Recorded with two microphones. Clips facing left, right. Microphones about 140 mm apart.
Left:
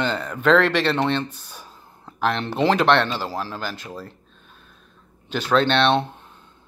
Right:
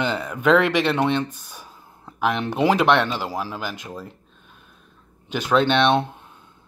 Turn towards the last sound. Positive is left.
turn(degrees=-10)  # may be behind; listen again after turning